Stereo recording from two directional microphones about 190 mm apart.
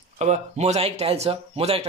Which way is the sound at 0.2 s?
35° right (ahead or behind).